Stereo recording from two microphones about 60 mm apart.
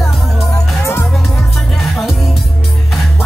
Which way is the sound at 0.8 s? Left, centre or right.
Left.